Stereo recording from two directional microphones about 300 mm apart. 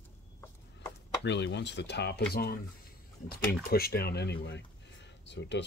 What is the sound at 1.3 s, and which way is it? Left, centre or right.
Speech, left.